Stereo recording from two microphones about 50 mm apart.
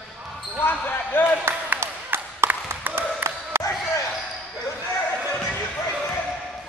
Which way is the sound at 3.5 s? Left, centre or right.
Right.